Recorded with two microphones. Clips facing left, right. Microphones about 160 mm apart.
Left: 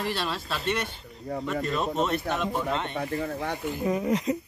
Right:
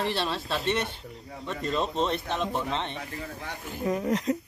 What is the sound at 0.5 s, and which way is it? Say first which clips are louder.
Speech: right 1 dB; centre (ahead or behind).